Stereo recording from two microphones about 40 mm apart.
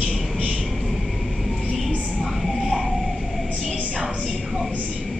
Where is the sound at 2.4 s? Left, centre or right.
Centre.